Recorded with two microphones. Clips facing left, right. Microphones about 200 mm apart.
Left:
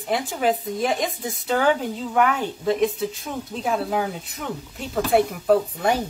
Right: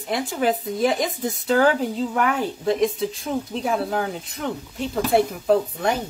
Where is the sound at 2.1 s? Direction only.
Centre (ahead or behind).